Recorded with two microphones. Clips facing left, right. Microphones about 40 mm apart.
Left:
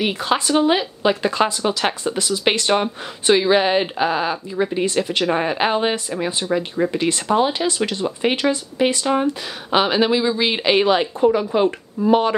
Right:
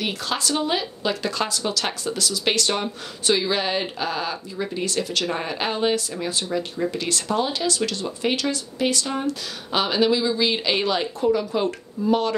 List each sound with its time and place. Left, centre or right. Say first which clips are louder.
0.0 s speech: left 6 dB; left
6.5 s speech: left 6 dB; left
6.9 s speech: left 6 dB; left